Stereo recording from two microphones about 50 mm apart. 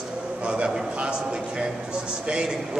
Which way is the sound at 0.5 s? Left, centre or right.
Right.